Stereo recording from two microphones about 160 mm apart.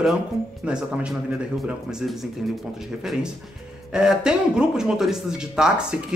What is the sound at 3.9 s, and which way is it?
A man's voice, 5° right (ahead or behind).